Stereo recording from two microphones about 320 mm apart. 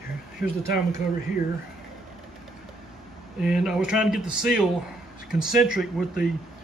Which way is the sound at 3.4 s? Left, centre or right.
Centre.